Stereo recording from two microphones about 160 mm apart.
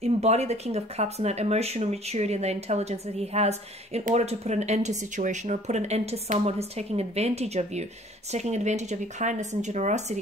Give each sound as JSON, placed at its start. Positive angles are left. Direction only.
{"t": 0.0, "sound": "speech", "side_deg": -40}